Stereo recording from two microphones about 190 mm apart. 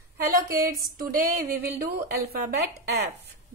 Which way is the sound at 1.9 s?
55° right (ahead or behind).